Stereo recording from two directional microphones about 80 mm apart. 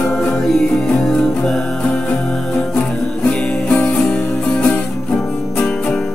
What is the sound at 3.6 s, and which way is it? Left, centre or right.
Music, centre.